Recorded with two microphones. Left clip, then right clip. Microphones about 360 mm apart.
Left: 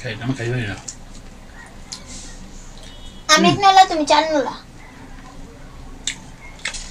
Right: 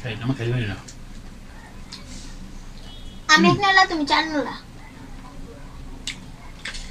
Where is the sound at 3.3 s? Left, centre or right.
Centre.